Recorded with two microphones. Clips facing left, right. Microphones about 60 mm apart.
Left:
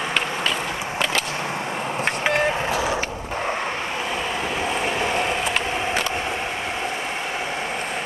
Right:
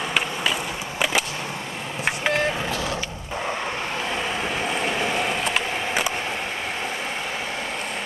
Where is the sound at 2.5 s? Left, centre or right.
Centre.